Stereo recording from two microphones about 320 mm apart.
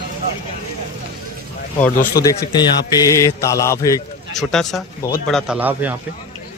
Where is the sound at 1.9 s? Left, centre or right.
Left.